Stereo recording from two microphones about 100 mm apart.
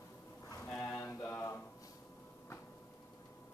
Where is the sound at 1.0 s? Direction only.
25° left (ahead or behind).